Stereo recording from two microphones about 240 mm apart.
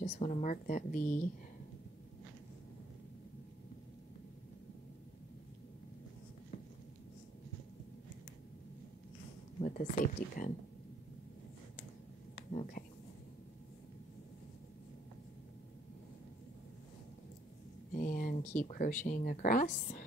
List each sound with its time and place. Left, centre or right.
0.0 s speech: left
9.6 s speech: left
17.9 s speech: left